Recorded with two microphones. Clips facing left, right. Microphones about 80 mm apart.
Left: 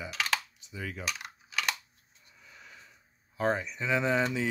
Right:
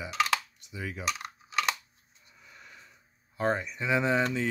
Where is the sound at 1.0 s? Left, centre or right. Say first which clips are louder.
Right 4 dB; right.